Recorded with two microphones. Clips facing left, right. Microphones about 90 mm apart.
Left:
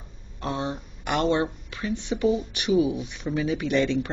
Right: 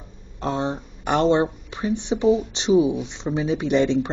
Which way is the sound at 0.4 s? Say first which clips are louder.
Right 4 dB; 25° right (ahead or behind).